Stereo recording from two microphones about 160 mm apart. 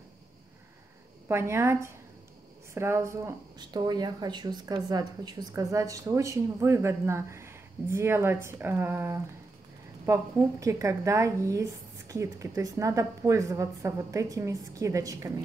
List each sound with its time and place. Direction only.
1.3 s a woman's voice: 15° right (ahead or behind)